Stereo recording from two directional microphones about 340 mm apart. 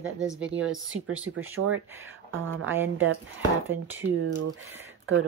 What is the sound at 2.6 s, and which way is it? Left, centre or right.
Speech, centre.